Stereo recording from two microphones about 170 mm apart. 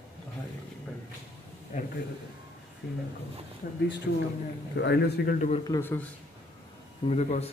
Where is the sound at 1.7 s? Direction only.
45° left (ahead or behind).